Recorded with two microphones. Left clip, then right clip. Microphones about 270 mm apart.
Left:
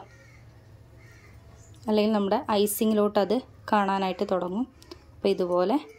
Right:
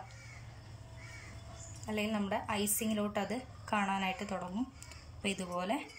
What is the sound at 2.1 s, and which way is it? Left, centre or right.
A woman's voice, left.